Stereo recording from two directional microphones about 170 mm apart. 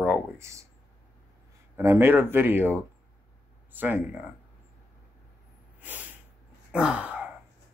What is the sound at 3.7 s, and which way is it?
Speech, 10° right (ahead or behind).